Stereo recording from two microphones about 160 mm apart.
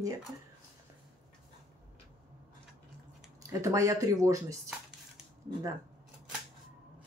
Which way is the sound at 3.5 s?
20° right (ahead or behind).